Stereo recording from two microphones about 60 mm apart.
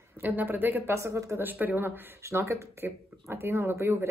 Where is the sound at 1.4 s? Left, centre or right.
Right.